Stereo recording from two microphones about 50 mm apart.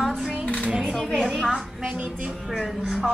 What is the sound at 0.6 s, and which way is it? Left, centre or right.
Speech, centre.